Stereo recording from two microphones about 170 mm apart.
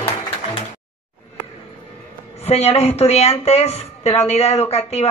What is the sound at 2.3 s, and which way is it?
A woman's voice, 40° left (ahead or behind).